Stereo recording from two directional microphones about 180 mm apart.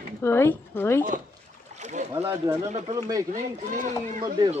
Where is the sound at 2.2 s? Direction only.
15° right (ahead or behind).